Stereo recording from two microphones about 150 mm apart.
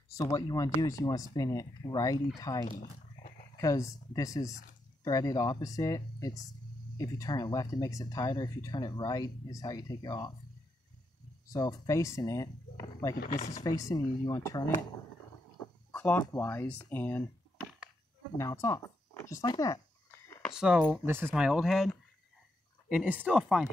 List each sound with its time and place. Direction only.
0.1 s speech: 25° left (ahead or behind)
11.4 s speech: 25° left (ahead or behind)
15.9 s a sound: 10° left (ahead or behind)
16.3 s speech: 15° left (ahead or behind)
18.4 s speech: 20° left (ahead or behind)
20.4 s speech: 5° right (ahead or behind)
21.4 s speech: centre (ahead or behind)